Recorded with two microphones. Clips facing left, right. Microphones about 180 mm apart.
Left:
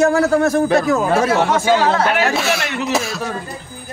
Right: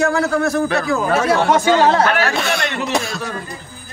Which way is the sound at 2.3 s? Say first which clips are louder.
Left 1 dB; centre (ahead or behind).